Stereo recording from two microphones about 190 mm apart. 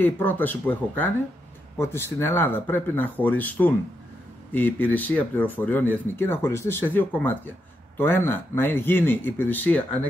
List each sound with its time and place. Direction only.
0.0 s speech: 10° left (ahead or behind)